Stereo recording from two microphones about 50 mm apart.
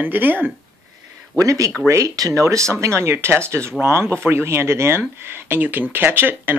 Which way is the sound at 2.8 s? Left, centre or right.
Right.